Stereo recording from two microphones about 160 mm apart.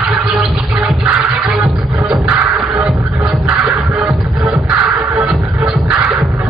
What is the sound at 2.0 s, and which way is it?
Music, 10° right (ahead or behind).